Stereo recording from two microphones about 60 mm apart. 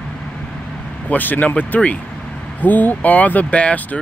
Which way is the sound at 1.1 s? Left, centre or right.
Left.